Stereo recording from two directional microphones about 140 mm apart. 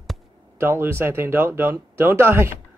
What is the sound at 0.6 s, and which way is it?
Speech, 15° right (ahead or behind).